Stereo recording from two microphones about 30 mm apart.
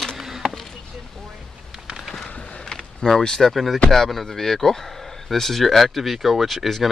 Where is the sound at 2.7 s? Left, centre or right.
Centre.